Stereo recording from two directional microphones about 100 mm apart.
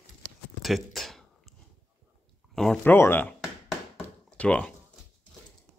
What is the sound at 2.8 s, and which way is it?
Speech, 20° left (ahead or behind).